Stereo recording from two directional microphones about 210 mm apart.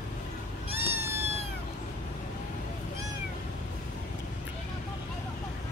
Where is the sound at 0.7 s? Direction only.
30° right (ahead or behind).